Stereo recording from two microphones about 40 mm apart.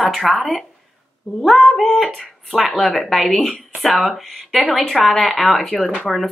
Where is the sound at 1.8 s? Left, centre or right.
Centre.